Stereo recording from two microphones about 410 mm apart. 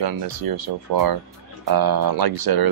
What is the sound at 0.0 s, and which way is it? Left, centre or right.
Speech, right.